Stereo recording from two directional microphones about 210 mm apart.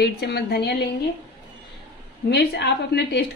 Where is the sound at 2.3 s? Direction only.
50° left (ahead or behind).